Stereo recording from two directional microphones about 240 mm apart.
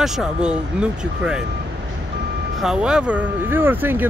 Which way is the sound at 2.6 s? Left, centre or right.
Centre.